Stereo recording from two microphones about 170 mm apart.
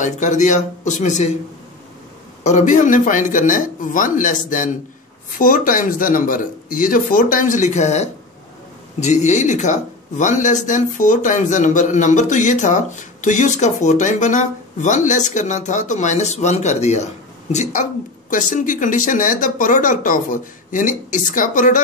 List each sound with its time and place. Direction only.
0.0 s speech: 45° left (ahead or behind)
2.4 s speech: 45° left (ahead or behind)